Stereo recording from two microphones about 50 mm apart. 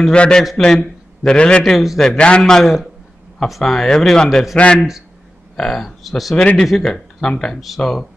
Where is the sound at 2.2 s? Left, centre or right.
Centre.